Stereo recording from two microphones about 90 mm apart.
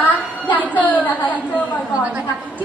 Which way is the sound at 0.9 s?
20° left (ahead or behind).